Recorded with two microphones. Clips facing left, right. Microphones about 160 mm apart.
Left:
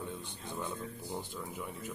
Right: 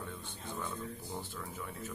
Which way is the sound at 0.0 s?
15° left (ahead or behind).